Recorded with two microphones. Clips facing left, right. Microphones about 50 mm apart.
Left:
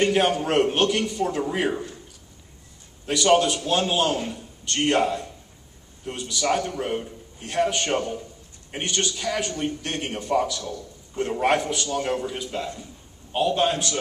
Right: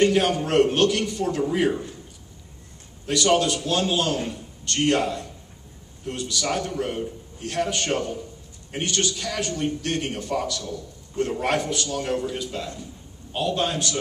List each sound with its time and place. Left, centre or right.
0.0 s a man's voice: centre
3.1 s a man's voice: centre